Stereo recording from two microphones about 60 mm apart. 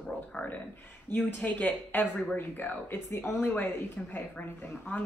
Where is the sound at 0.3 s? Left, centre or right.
Left.